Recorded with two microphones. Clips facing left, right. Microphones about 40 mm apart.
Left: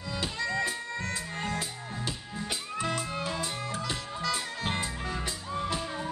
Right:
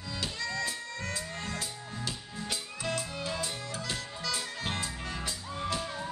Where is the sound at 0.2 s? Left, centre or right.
Centre.